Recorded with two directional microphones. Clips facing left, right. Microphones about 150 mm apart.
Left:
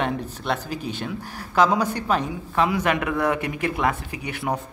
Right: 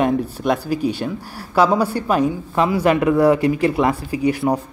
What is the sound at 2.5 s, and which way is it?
Speech, 35° right (ahead or behind).